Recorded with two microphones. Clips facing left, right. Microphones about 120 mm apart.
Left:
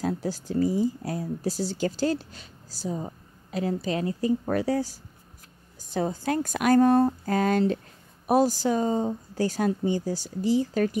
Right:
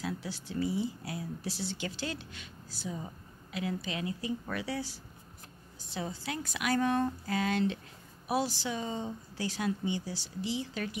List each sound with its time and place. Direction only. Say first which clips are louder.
0.0 s speech: left 9 dB; 40° left (ahead or behind)